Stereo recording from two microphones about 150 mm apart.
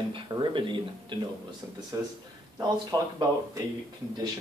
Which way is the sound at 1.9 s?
20° right (ahead or behind).